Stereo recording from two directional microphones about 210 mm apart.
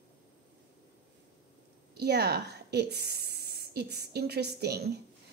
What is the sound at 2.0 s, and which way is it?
Speech, 50° right (ahead or behind).